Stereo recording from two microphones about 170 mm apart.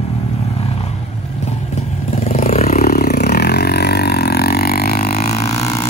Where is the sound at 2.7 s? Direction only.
65° left (ahead or behind).